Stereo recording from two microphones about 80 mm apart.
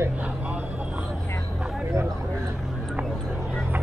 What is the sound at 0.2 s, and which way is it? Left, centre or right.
Vehicle, centre.